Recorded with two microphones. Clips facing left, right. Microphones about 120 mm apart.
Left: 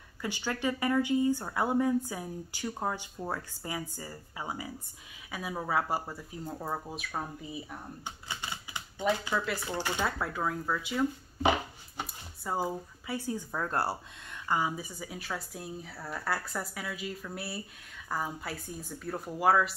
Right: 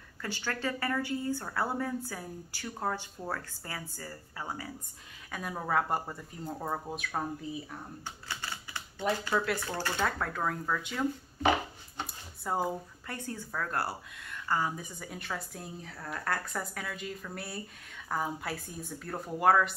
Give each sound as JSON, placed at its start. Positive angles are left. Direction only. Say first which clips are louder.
{"t": 0.2, "sound": "speech", "louder": "left 2 dB", "side_deg": 15}
{"t": 8.0, "sound": "typewriter", "louder": "left 1 dB", "side_deg": 15}
{"t": 9.7, "sound": "speech", "louder": "even", "side_deg": 15}
{"t": 12.4, "sound": "speech", "louder": "right 1 dB", "side_deg": 0}